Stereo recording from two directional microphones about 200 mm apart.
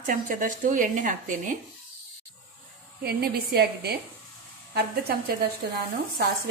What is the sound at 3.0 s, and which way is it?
Speech, 50° right (ahead or behind).